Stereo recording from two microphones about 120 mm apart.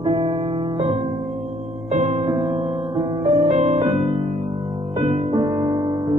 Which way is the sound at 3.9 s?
50° right (ahead or behind).